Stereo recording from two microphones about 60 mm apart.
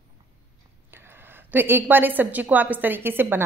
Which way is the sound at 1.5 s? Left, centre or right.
Right.